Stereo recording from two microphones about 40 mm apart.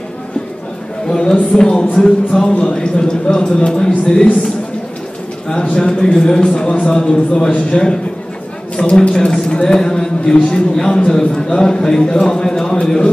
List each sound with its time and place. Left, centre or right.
1.1 s a man's voice: centre
5.5 s a man's voice: left